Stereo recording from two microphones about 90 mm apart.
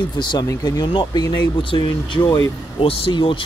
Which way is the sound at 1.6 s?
70° left (ahead or behind).